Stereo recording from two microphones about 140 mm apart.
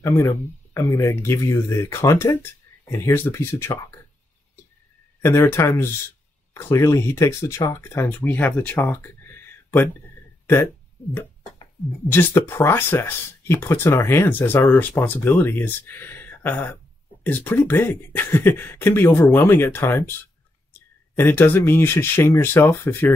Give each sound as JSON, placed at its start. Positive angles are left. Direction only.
{"t": 0.0, "sound": "speech", "side_deg": 15}
{"t": 5.2, "sound": "speech", "side_deg": 20}
{"t": 12.1, "sound": "speech", "side_deg": 15}
{"t": 21.2, "sound": "speech", "side_deg": 15}